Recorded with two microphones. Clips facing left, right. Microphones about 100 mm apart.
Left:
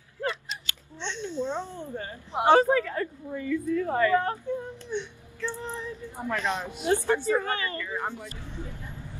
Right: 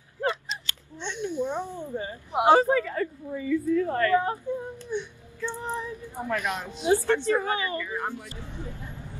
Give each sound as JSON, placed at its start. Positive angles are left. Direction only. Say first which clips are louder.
{"t": 0.2, "sound": "a sound", "louder": "right 3 dB", "side_deg": -20}
{"t": 2.6, "sound": "a woman's voice", "louder": "even", "side_deg": 0}
{"t": 3.8, "sound": "a woman's voice", "louder": "even", "side_deg": 10}
{"t": 4.2, "sound": "child singing", "louder": "right 1 dB", "side_deg": -15}
{"t": 6.3, "sound": "a woman's voice", "louder": "even", "side_deg": -5}
{"t": 7.1, "sound": "a woman's voice", "louder": "right 1 dB", "side_deg": 5}
{"t": 7.3, "sound": "a woman's voice", "louder": "right 1 dB", "side_deg": -15}
{"t": 8.0, "sound": "a woman's voice", "louder": "right 1 dB", "side_deg": 15}